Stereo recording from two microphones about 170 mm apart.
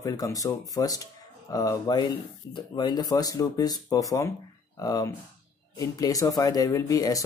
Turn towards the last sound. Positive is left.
turn(degrees=20)  # may be behind; listen again after turning